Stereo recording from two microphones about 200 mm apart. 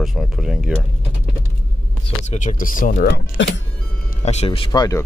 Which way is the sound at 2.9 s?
60° left (ahead or behind).